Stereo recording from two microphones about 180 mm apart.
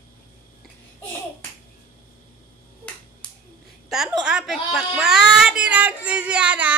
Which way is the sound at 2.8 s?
5° left (ahead or behind).